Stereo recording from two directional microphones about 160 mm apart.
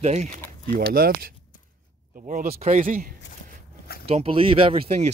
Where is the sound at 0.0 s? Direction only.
45° right (ahead or behind).